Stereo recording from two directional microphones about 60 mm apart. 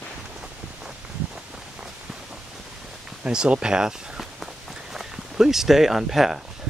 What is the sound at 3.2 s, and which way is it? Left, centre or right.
Speech, centre.